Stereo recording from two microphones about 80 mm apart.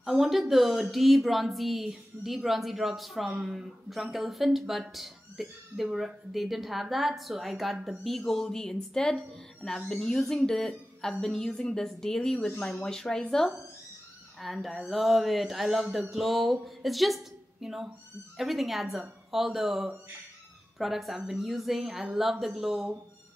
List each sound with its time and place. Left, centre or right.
0.0 s a woman's voice: centre
12.8 s a woman's voice: centre